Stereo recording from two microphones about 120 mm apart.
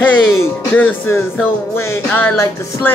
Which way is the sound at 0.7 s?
15° left (ahead or behind).